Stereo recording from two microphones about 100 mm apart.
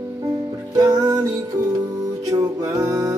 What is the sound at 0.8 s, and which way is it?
Music, 35° right (ahead or behind).